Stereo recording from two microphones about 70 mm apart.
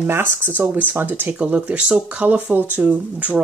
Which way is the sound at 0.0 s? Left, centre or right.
Right.